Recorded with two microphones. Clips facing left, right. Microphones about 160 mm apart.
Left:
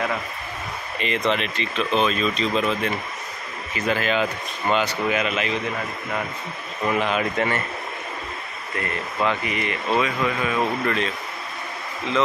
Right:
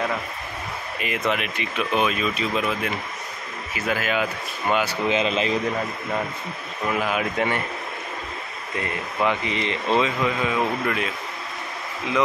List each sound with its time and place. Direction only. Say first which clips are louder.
0.9 s speech: left 2 dB; 5° right (ahead or behind)
5.0 s speech: right 1 dB; 25° right (ahead or behind)
6.9 s speech: left 2 dB; 5° right (ahead or behind)
8.7 s speech: even; 15° right (ahead or behind)